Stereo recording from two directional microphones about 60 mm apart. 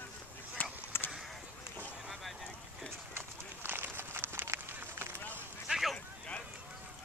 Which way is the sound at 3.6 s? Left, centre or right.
Right.